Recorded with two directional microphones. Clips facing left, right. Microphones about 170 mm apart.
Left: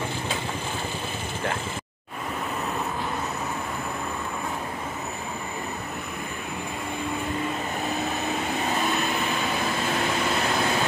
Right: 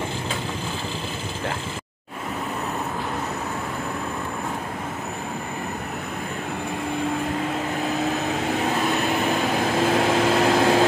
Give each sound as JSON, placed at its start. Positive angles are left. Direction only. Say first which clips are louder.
{"t": 9.9, "sound": "vehicle", "louder": "right 7 dB", "side_deg": -90}